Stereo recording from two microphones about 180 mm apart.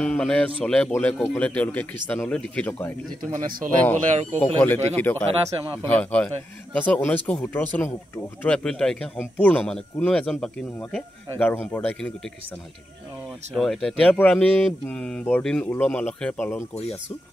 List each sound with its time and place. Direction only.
0.0 s a man's voice: 5° left (ahead or behind)
3.3 s a man's voice: 45° right (ahead or behind)
4.6 s a man's voice: 10° left (ahead or behind)
13.6 s a man's voice: centre (ahead or behind)